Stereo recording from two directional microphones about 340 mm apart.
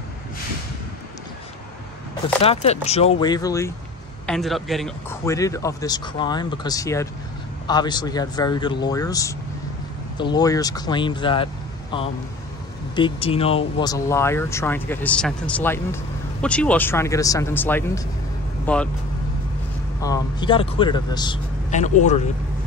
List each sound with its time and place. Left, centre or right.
2.4 s speech: centre
12.9 s speech: centre
20.0 s speech: centre